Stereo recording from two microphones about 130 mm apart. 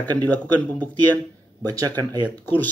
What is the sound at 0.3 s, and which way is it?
Speech, 10° left (ahead or behind).